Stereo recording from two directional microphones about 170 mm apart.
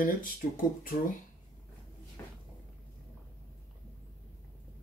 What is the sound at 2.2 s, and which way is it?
Cupboard open or close, 15° left (ahead or behind).